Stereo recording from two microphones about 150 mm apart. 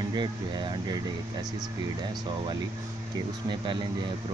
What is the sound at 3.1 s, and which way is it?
Speech, 30° right (ahead or behind).